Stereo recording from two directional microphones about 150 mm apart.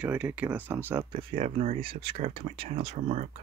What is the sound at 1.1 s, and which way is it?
Speech, 40° right (ahead or behind).